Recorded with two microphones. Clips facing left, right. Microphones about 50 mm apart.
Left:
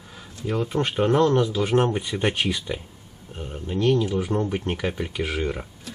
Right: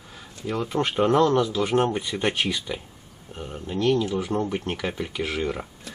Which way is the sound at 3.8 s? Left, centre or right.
Centre.